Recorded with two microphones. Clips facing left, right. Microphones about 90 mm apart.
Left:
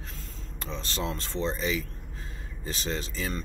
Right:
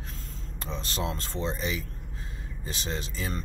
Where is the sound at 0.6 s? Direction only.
15° right (ahead or behind).